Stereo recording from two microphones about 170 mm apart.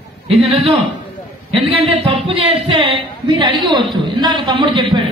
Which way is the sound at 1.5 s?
35° right (ahead or behind).